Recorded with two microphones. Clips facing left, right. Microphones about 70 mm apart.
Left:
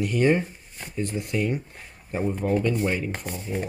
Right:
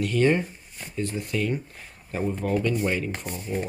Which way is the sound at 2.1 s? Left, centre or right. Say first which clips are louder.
Left 2 dB; centre.